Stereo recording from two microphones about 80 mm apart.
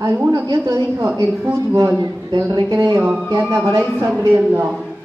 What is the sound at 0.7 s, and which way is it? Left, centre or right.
A woman's voice, right.